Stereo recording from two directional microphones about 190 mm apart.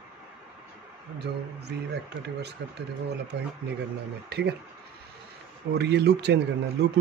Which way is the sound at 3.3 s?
65° right (ahead or behind).